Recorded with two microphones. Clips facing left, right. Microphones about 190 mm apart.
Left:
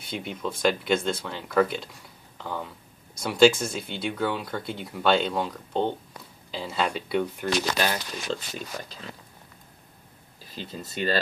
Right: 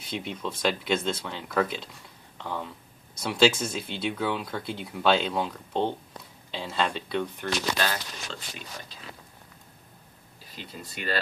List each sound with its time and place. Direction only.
0.1 s speech: centre (ahead or behind)
8.3 s speech: 35° left (ahead or behind)
10.6 s speech: 30° left (ahead or behind)